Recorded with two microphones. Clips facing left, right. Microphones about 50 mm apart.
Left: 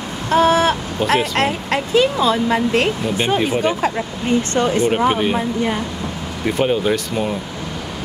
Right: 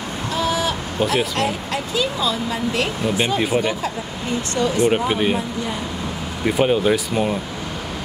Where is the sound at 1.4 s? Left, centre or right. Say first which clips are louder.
Left 4 dB; left.